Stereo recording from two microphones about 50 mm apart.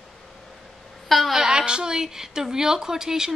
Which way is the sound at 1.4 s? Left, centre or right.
Centre.